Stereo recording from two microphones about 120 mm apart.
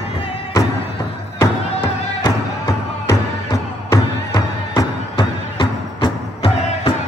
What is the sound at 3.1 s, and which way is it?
Music, 25° left (ahead or behind).